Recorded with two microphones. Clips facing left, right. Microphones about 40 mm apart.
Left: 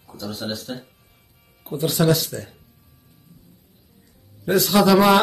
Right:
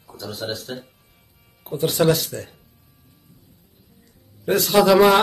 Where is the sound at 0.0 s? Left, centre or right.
Centre.